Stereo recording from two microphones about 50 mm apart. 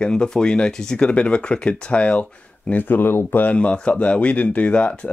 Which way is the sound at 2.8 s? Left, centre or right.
Left.